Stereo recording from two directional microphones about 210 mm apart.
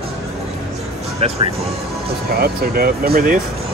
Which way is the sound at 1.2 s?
30° right (ahead or behind).